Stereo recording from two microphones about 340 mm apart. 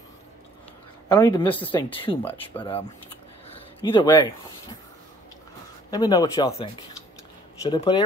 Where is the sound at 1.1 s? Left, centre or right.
Centre.